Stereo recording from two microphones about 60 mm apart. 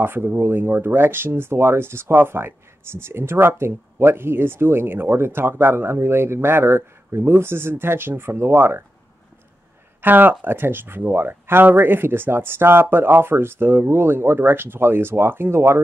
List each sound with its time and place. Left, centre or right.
0.0 s speech: right
10.0 s speech: right